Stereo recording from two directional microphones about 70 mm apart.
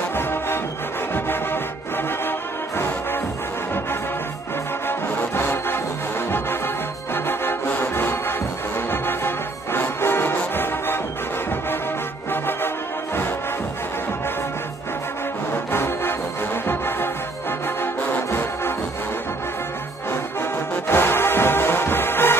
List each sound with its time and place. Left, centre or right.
0.1 s music: left
4.8 s music: left
7.2 s music: left
12.3 s music: left
15.5 s music: left
20.1 s music: left